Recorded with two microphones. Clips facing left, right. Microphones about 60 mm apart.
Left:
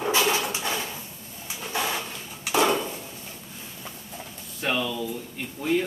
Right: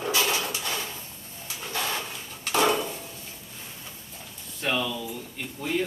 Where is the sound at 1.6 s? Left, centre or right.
Centre.